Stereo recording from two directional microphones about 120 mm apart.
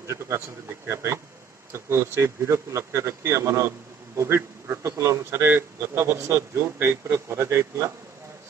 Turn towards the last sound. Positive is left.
turn(degrees=-25)  # may be behind; listen again after turning